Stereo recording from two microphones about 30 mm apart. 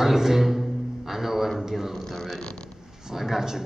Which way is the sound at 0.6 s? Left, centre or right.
Centre.